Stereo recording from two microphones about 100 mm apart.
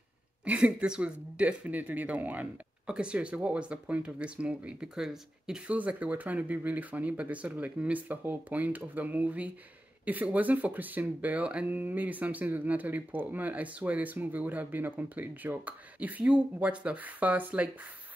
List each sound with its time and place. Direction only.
0.5 s speech: 10° right (ahead or behind)